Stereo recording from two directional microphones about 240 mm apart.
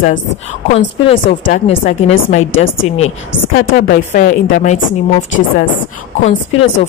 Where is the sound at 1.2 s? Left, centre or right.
Left.